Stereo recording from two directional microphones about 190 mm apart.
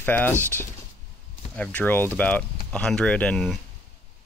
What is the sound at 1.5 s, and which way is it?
Speech, 10° left (ahead or behind).